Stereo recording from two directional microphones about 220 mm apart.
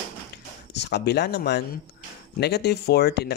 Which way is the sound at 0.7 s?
50° left (ahead or behind).